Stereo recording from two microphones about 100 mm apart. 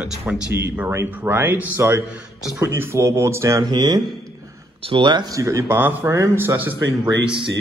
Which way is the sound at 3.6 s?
45° right (ahead or behind).